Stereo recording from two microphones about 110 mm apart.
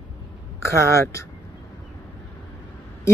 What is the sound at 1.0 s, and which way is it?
Speech, 25° left (ahead or behind).